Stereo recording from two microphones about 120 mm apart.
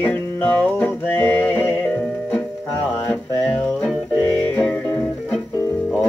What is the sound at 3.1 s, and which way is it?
Music, 5° left (ahead or behind).